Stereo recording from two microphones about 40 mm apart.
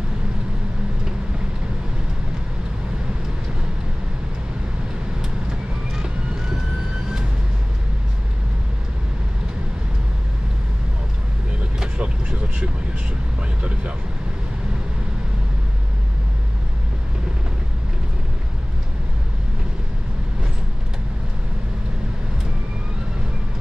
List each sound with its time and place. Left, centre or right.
12.0 s vehicle: right